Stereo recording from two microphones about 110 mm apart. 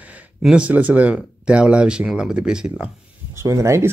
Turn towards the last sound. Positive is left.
turn(degrees=-25)  # may be behind; listen again after turning